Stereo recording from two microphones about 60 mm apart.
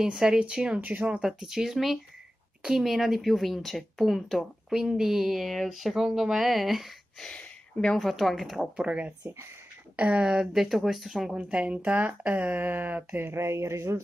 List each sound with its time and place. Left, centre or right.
0.0 s speech: centre
0.7 s speech: right
1.2 s speech: centre
4.7 s speech: centre
7.2 s a sound: centre
8.0 s speech: centre
8.8 s speech: right
10.3 s speech: centre; by 12.1 s right
12.1 s a sound: right